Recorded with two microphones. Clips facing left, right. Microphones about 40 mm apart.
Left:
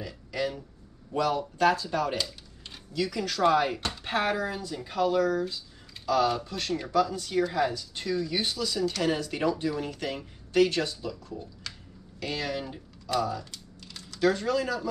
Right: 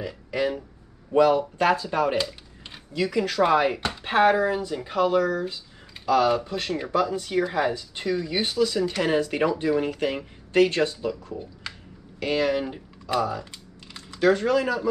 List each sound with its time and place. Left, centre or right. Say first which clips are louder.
0.0 s speech: right 5 dB; right